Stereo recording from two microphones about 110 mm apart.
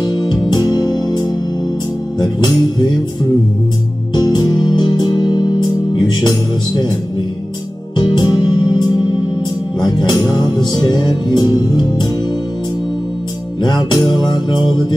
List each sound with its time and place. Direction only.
0.0 s music: 40° left (ahead or behind)
4.1 s music: 40° left (ahead or behind)
8.1 s music: 40° left (ahead or behind)
13.6 s music: 40° left (ahead or behind)